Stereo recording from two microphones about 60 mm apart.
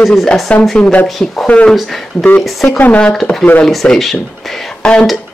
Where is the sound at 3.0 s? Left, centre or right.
Centre.